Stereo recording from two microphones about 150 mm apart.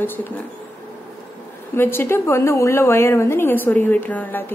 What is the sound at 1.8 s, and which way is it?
A woman's voice, 15° left (ahead or behind).